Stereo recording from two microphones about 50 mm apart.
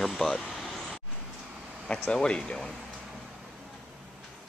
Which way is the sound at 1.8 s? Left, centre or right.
Left.